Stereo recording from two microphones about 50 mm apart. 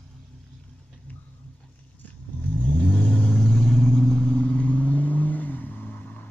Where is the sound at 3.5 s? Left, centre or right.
Centre.